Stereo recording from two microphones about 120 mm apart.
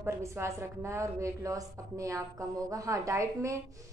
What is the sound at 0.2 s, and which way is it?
A woman's voice, 25° right (ahead or behind).